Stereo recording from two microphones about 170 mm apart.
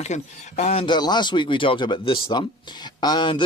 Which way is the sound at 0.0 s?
40° left (ahead or behind).